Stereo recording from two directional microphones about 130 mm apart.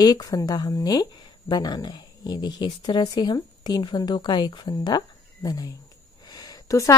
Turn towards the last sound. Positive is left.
turn(degrees=25)  # may be behind; listen again after turning